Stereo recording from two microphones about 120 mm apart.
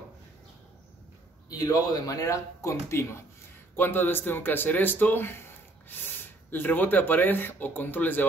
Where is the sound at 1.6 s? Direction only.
30° left (ahead or behind).